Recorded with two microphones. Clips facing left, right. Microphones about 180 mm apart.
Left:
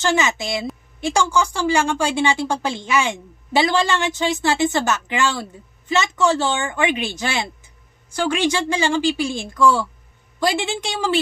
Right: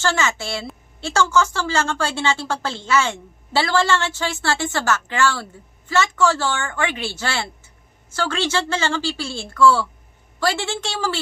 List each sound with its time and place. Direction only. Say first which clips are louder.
0.0 s a woman's voice: left 2 dB; 15° left (ahead or behind)